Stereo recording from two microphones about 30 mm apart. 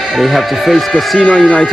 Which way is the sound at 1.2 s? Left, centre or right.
Left.